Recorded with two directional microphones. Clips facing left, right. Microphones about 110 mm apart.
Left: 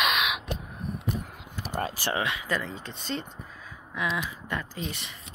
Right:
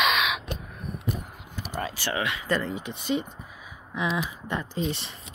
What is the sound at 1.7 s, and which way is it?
Typing, 40° left (ahead or behind).